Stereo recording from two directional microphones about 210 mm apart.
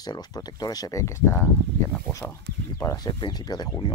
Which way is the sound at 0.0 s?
20° left (ahead or behind).